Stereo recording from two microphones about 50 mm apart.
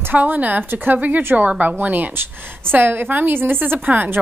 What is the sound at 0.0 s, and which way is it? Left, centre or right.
A woman's voice, right.